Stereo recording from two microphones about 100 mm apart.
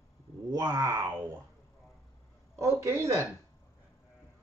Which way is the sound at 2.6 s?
30° right (ahead or behind).